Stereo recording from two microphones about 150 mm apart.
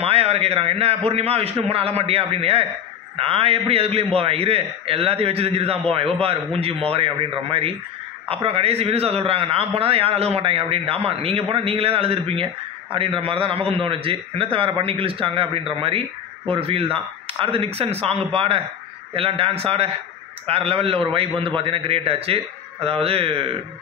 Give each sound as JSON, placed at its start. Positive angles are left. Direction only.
{"t": 0.0, "sound": "a man's voice", "side_deg": -45}